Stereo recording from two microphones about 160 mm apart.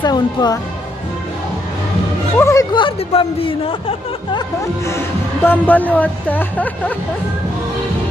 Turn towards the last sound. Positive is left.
turn(degrees=10)  # may be behind; listen again after turning